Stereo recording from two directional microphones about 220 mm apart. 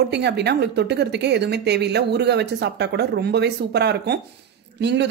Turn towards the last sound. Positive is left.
turn(degrees=-50)  # may be behind; listen again after turning